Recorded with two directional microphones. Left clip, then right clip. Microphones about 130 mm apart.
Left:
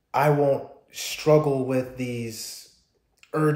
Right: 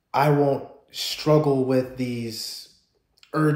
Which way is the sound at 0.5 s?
30° left (ahead or behind).